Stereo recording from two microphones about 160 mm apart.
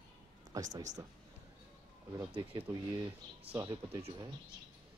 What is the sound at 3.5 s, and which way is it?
Speech, 25° right (ahead or behind).